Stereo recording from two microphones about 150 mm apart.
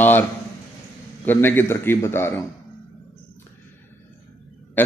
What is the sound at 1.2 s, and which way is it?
A man's voice, 15° left (ahead or behind).